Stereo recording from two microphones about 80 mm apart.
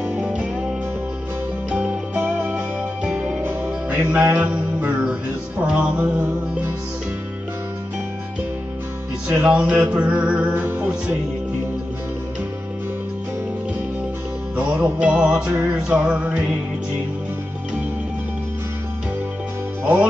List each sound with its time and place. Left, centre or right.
0.1 s music: centre
3.0 s music: centre
3.4 s music: right
9.3 s music: centre
14.6 s music: right
19.8 s speech: right